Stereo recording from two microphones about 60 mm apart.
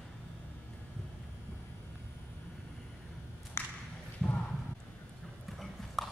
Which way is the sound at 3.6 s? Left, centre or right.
Left.